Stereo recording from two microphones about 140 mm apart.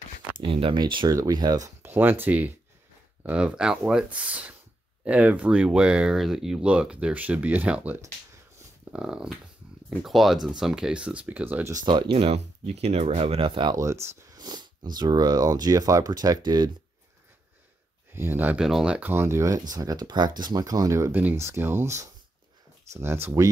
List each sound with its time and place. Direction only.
0.4 s speech: 40° right (ahead or behind)
1.8 s speech: 15° right (ahead or behind)
11.7 s speech: 35° right (ahead or behind)
13.7 s speech: 20° right (ahead or behind)
18.1 s speech: 15° right (ahead or behind)